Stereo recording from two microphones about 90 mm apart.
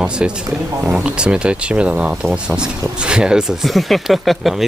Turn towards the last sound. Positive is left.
turn(degrees=0)  # may be behind; listen again after turning